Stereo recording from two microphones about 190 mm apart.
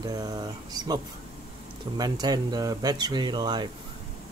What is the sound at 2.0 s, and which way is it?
Speech, 20° right (ahead or behind).